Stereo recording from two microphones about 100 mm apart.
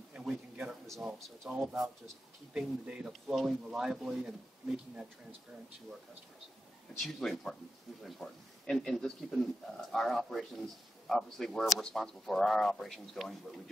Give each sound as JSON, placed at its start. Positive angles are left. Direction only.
{"t": 0.1, "sound": "a sound", "side_deg": -10}
{"t": 1.0, "sound": "a man's voice", "side_deg": 0}
{"t": 1.5, "sound": "a man's voice", "side_deg": -15}
{"t": 7.0, "sound": "a man's voice", "side_deg": 5}